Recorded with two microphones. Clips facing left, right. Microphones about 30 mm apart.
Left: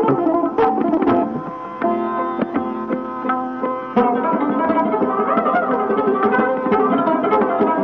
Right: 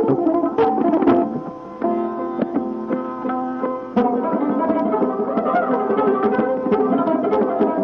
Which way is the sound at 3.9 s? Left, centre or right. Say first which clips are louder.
Left 2 dB; left.